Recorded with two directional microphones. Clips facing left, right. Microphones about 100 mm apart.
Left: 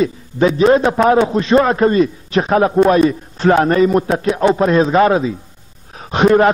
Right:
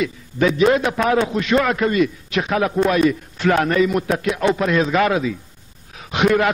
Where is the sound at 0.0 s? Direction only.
35° left (ahead or behind).